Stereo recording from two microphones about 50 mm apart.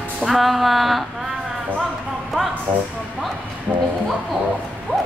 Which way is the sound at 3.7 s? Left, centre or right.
Right.